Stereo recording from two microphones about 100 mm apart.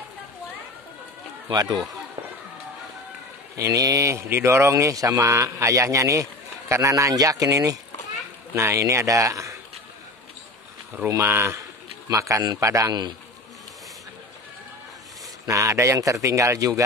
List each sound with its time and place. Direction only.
1.5 s speech: 40° right (ahead or behind)
3.5 s a man's voice: 35° right (ahead or behind)
11.1 s a man's voice: 30° right (ahead or behind)
15.4 s a man's voice: 35° right (ahead or behind)